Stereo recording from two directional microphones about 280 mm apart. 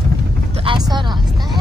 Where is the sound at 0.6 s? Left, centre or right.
Centre.